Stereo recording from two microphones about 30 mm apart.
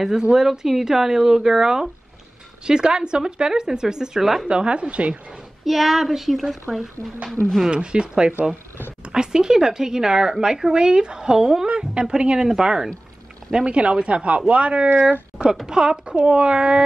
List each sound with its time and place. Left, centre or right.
0.2 s speech: right
0.5 s speech: centre
4.5 s speech: right
5.7 s speech: centre
7.7 s speech: right
13.7 s speech: right
15.6 s speech: right